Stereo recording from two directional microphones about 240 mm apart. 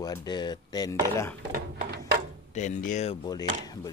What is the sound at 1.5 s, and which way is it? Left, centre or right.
Speech, right.